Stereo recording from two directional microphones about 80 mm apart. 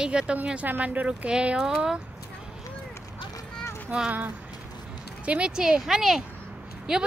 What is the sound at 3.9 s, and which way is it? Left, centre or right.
Speech, centre.